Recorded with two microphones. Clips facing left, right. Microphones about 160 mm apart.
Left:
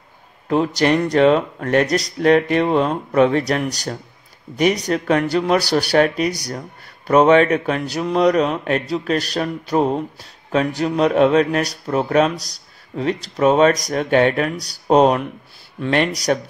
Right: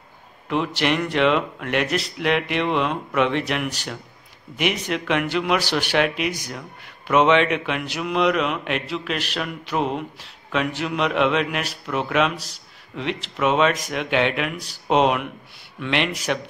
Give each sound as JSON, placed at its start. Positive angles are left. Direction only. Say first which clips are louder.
{"t": 0.5, "sound": "speech", "louder": "left 6 dB", "side_deg": 40}